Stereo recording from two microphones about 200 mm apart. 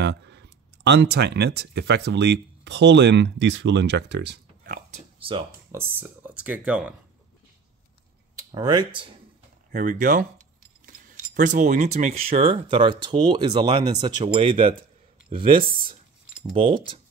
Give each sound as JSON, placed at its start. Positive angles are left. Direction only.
{"t": 0.0, "sound": "speech", "side_deg": -60}
{"t": 5.7, "sound": "speech", "side_deg": -10}
{"t": 8.4, "sound": "speech", "side_deg": -20}
{"t": 9.7, "sound": "speech", "side_deg": -40}
{"t": 16.5, "sound": "speech", "side_deg": -25}